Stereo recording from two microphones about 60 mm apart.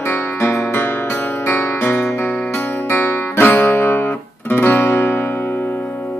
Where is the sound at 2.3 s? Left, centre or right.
Left.